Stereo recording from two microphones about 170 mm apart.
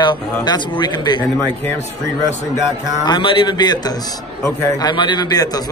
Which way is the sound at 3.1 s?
30° left (ahead or behind).